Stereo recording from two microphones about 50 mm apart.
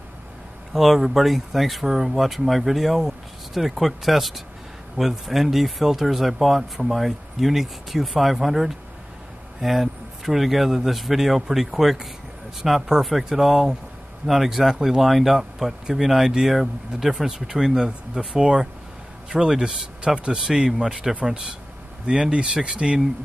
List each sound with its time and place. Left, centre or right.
0.7 s speech: centre